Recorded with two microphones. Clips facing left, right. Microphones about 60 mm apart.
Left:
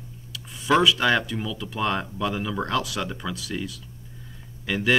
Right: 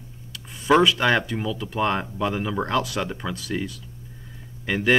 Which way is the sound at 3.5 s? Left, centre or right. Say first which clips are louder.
Right 3 dB; right.